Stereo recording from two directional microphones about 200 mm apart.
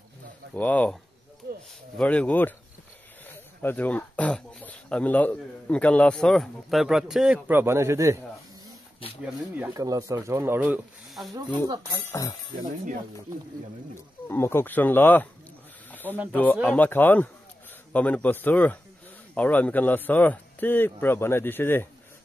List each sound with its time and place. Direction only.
0.6 s a man's voice: 5° left (ahead or behind)
2.0 s a man's voice: 5° left (ahead or behind); by 8.2 s 15° right (ahead or behind)
9.8 s speech: 20° right (ahead or behind)
11.3 s speech: 20° right (ahead or behind)
12.1 s a man's voice: 15° left (ahead or behind)
14.2 s a man's voice: 10° left (ahead or behind)
15.9 s a sound: 10° left (ahead or behind)
16.3 s a man's voice: 10° left (ahead or behind)